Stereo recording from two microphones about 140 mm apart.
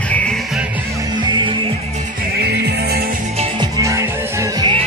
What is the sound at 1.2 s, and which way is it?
Music, 35° right (ahead or behind).